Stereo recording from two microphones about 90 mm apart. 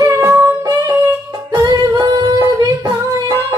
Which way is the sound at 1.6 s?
35° right (ahead or behind).